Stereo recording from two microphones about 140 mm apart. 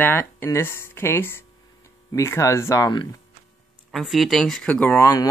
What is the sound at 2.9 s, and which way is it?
Speech, 30° left (ahead or behind).